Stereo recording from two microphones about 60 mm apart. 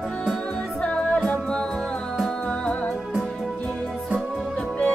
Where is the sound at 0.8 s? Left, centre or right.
Centre.